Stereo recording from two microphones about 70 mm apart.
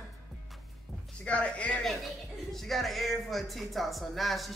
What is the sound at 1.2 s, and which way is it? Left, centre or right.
Speech, centre.